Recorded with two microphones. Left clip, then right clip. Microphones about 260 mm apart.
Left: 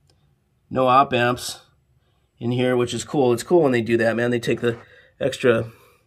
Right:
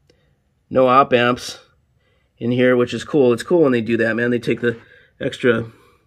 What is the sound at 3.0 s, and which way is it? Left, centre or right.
Speech, centre.